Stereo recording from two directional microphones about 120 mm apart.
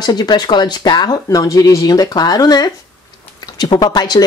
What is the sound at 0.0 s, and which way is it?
Speech, 35° left (ahead or behind).